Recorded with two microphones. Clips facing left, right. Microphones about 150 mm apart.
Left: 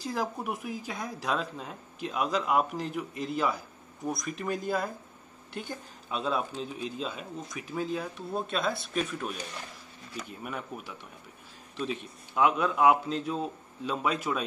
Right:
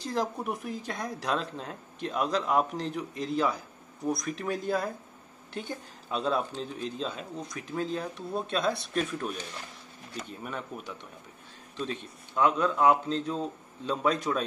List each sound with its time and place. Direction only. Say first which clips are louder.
0.0 s speech: right 1 dB; 5° left (ahead or behind)
10.4 s a man's voice: even; 10° left (ahead or behind)